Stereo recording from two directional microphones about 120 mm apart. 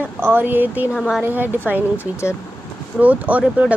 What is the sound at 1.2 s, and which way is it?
Speech, 15° right (ahead or behind).